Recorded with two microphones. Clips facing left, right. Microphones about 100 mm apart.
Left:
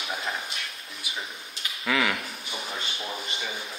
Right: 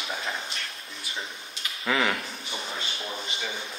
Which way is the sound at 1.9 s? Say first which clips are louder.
Even; 30° right (ahead or behind).